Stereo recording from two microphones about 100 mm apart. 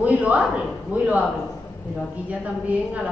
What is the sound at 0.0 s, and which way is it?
A woman's voice, 15° right (ahead or behind).